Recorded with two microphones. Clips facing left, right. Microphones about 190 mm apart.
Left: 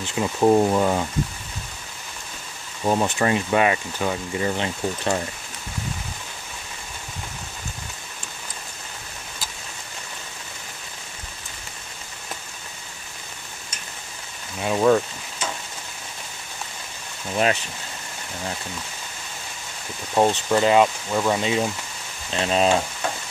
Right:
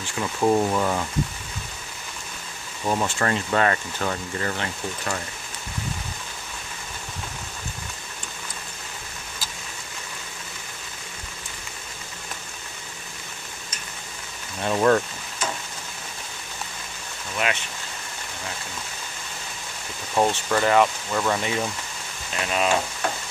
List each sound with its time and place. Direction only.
0.0 s speech: 20° left (ahead or behind)
2.8 s speech: 20° left (ahead or behind)
14.6 s speech: 5° left (ahead or behind)
17.4 s speech: 35° left (ahead or behind)
20.2 s speech: 15° left (ahead or behind)
22.3 s speech: 30° left (ahead or behind)